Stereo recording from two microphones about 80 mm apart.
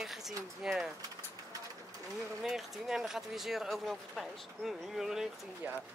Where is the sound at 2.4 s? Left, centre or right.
Centre.